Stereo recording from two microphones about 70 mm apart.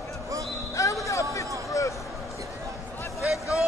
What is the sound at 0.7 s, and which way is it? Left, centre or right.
Basketball bounce, left.